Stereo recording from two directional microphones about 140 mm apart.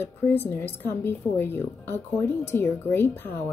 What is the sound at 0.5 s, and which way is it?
Speech, 15° left (ahead or behind).